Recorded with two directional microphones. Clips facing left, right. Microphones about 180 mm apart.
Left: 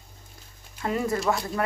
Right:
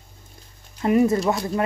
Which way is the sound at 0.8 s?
20° right (ahead or behind).